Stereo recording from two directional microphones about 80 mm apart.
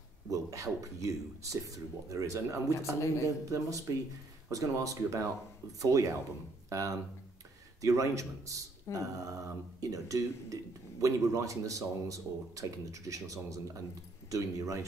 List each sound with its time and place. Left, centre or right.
0.3 s speech: right